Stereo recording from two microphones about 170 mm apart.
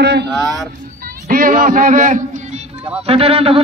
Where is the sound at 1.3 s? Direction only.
55° right (ahead or behind).